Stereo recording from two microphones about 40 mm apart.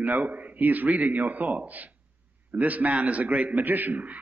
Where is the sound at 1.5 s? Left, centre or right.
Right.